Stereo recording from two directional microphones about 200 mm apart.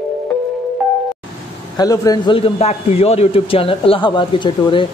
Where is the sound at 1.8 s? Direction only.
20° left (ahead or behind).